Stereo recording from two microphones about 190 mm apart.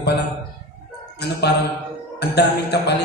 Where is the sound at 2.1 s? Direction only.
60° left (ahead or behind).